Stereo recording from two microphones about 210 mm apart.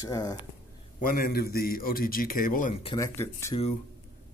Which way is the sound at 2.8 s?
15° left (ahead or behind).